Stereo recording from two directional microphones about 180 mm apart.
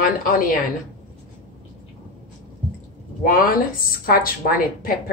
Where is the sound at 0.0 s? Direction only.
50° left (ahead or behind).